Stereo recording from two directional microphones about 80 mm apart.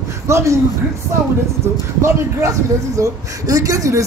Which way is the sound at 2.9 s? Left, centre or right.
Right.